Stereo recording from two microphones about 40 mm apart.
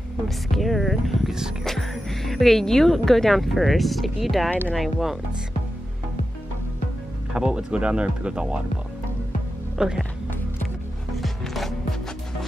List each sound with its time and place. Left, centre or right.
0.5 s speech: centre
1.6 s speech: centre
7.3 s speech: right
9.8 s speech: centre
11.1 s music: centre